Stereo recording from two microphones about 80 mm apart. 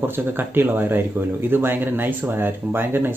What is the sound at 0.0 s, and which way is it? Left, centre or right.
A man's voice, right.